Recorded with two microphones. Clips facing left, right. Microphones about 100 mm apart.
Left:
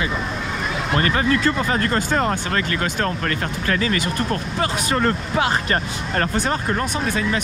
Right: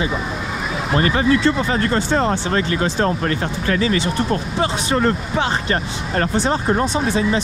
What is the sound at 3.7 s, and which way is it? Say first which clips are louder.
Speech: right 3 dB; 45° left (ahead or behind).